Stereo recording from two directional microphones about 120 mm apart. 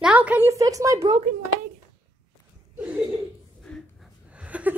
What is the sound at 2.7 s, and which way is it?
Chuckle, 10° right (ahead or behind).